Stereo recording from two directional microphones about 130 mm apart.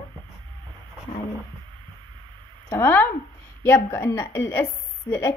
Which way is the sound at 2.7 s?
15° left (ahead or behind).